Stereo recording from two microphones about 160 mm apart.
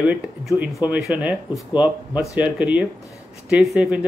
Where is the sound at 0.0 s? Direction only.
10° right (ahead or behind).